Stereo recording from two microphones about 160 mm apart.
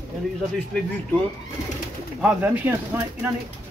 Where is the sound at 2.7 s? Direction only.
15° right (ahead or behind).